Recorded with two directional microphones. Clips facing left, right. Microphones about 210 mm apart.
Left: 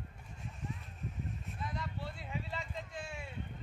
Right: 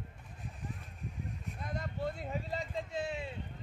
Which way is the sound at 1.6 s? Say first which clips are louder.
Right 5 dB; 45° right (ahead or behind).